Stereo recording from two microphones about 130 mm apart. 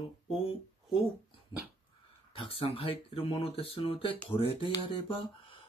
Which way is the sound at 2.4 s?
45° left (ahead or behind).